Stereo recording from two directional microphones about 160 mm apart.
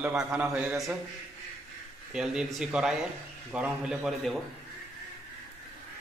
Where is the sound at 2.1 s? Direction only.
5° right (ahead or behind).